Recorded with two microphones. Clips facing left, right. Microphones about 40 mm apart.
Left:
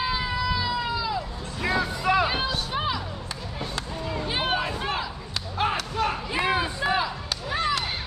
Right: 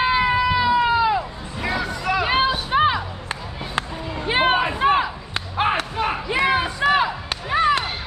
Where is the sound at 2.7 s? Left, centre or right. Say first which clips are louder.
Right 9 dB; right.